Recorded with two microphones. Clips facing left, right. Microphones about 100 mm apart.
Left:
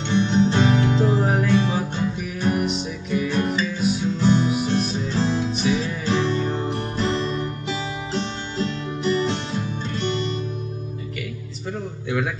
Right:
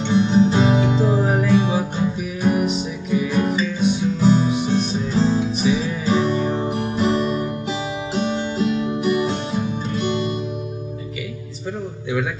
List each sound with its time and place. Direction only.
0.1 s music: 10° right (ahead or behind)
4.2 s music: 10° right (ahead or behind)
4.5 s music: centre (ahead or behind)